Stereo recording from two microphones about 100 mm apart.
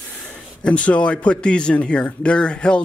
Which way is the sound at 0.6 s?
10° left (ahead or behind).